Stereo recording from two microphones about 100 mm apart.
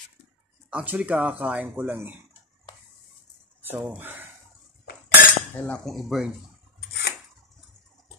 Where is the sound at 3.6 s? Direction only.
20° right (ahead or behind).